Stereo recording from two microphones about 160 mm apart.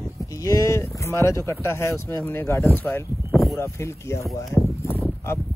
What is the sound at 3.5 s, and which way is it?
Speech, 15° left (ahead or behind).